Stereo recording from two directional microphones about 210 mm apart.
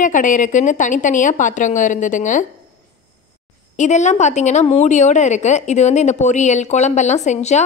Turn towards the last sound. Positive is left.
turn(degrees=30)  # may be behind; listen again after turning